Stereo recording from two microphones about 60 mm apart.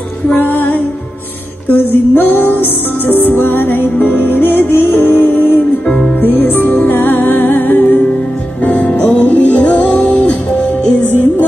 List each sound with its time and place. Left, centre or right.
0.4 s music: left
5.9 s music: centre
6.2 s music: left
11.1 s music: left